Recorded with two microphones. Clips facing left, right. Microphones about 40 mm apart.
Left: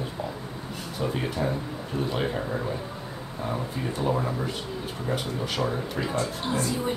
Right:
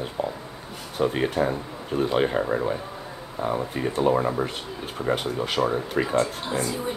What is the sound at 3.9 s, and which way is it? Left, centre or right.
Speech, right.